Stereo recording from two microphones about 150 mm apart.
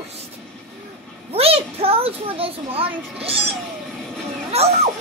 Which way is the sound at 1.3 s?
40° right (ahead or behind).